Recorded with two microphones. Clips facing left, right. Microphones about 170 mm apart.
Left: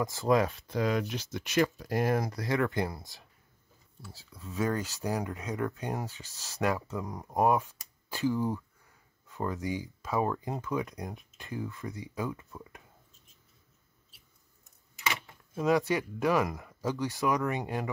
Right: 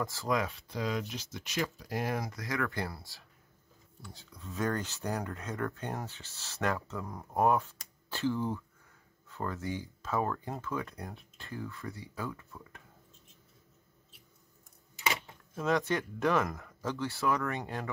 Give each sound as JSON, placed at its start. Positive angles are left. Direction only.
{"t": 0.0, "sound": "speech", "side_deg": 20}
{"t": 0.5, "sound": "speech", "side_deg": 50}
{"t": 2.3, "sound": "speech", "side_deg": 30}
{"t": 4.0, "sound": "speech", "side_deg": 5}
{"t": 6.3, "sound": "speech", "side_deg": 40}
{"t": 6.6, "sound": "speech", "side_deg": 10}
{"t": 15.5, "sound": "speech", "side_deg": 10}